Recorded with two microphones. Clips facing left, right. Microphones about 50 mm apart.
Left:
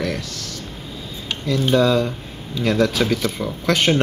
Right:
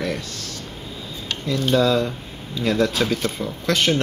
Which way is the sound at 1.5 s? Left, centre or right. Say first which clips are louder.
Left 2 dB; centre.